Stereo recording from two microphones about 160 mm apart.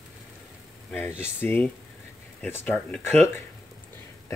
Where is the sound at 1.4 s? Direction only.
10° left (ahead or behind).